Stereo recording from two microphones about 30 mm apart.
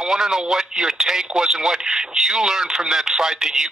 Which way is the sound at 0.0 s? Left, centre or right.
Centre.